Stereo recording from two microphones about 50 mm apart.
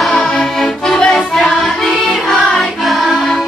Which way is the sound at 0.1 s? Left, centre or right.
Centre.